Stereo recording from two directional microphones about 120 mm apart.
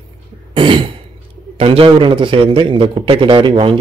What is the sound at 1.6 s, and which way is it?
A man's voice, 50° right (ahead or behind).